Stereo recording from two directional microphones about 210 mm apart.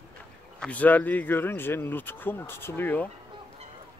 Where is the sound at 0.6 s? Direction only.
5° left (ahead or behind).